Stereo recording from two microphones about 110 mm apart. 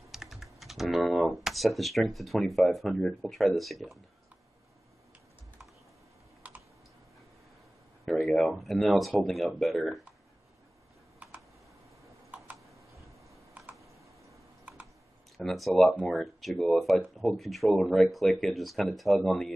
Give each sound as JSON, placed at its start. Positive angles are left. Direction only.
{"t": 0.1, "sound": "speech", "side_deg": -5}
{"t": 6.4, "sound": "computer keyboard", "side_deg": -15}
{"t": 8.0, "sound": "speech", "side_deg": 5}
{"t": 13.7, "sound": "typing", "side_deg": -30}
{"t": 14.6, "sound": "computer keyboard", "side_deg": -15}
{"t": 15.3, "sound": "speech", "side_deg": 0}